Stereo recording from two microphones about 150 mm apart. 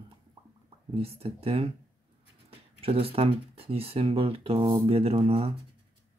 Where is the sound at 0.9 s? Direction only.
40° right (ahead or behind).